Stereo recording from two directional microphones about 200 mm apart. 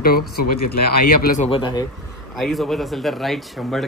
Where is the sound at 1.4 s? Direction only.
25° left (ahead or behind).